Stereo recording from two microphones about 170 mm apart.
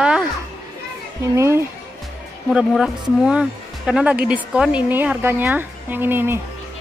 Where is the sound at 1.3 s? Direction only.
15° right (ahead or behind).